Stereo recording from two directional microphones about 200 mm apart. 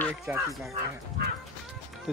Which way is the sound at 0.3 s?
10° right (ahead or behind).